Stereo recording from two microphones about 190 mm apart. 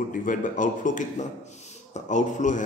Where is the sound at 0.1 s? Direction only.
45° left (ahead or behind).